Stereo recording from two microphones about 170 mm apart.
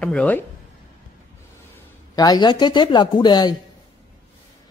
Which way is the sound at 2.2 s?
25° left (ahead or behind).